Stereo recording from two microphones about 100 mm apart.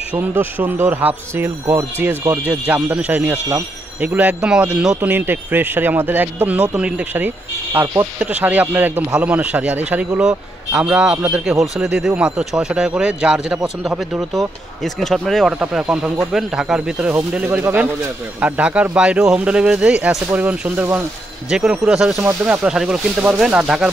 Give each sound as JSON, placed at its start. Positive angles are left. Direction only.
{"t": 0.1, "sound": "a man's voice", "side_deg": -20}
{"t": 21.5, "sound": "a man's voice", "side_deg": -5}